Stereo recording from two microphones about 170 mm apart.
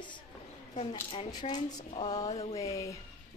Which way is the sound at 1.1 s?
25° left (ahead or behind).